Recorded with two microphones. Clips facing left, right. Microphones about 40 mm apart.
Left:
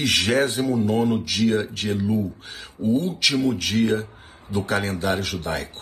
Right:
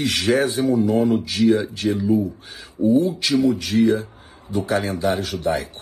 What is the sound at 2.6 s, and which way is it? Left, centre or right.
A man's voice, left.